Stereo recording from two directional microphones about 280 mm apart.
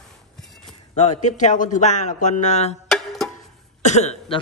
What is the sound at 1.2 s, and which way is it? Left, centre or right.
Speech, left.